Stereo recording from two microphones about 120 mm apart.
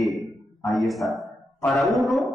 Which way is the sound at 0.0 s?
Centre (ahead or behind).